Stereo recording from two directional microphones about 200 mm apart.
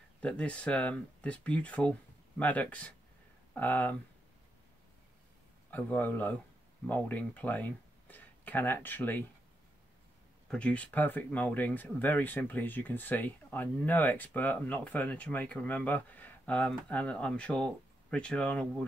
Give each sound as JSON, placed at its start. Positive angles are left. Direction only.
{"t": 0.2, "sound": "speech", "side_deg": 5}
{"t": 5.7, "sound": "speech", "side_deg": 10}
{"t": 10.5, "sound": "speech", "side_deg": 5}